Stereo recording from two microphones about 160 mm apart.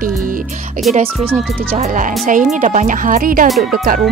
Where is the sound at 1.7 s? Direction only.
50° right (ahead or behind).